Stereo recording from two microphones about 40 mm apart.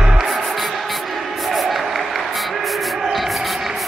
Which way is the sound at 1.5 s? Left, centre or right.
Centre.